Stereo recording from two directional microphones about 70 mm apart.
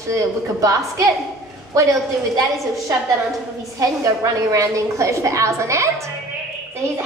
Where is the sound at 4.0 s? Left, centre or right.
Right.